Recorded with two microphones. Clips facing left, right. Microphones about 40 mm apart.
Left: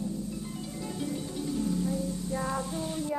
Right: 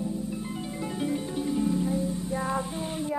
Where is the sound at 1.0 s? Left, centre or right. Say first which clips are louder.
Right 5 dB; right.